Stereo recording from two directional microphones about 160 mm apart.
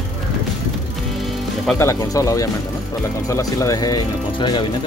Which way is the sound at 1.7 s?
20° left (ahead or behind).